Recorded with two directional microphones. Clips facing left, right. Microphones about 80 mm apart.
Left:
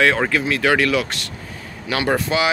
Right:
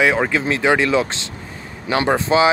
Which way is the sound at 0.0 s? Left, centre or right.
Centre.